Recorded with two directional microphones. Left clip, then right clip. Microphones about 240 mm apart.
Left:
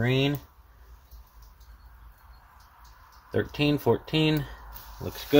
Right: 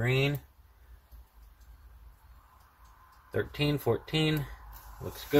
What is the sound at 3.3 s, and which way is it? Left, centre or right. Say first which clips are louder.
Speech: left 5 dB; centre.